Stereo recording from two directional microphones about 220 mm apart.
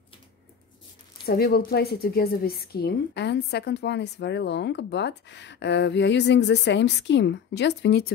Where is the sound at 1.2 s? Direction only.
45° left (ahead or behind).